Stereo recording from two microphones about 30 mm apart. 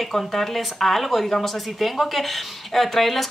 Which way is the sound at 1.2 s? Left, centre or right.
Centre.